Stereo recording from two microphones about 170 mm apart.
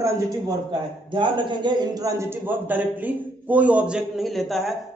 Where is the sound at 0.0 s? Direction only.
25° right (ahead or behind).